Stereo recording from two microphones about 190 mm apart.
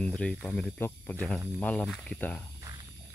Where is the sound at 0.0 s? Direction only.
5° left (ahead or behind).